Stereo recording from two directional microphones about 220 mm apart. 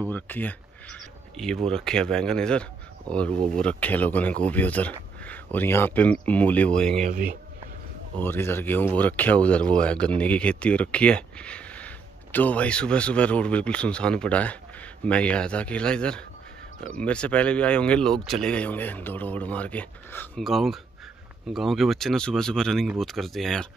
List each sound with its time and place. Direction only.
0.1 s speech: 10° left (ahead or behind)
7.0 s speech: 35° right (ahead or behind)
8.2 s speech: 10° left (ahead or behind)